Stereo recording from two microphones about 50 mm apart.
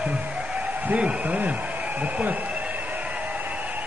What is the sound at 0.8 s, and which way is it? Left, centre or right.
Speech, right.